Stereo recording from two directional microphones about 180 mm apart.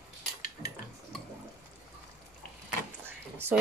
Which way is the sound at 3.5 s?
5° right (ahead or behind).